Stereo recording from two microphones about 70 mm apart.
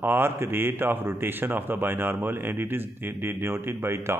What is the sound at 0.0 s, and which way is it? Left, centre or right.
A man's voice, right.